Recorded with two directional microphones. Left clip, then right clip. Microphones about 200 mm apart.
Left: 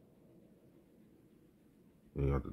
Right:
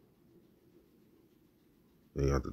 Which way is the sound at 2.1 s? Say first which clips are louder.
Right 5 dB; 25° right (ahead or behind).